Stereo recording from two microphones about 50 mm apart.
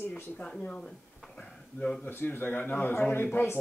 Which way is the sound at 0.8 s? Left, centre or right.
Centre.